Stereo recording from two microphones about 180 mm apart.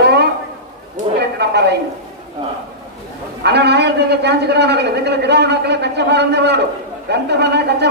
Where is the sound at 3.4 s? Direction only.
65° right (ahead or behind).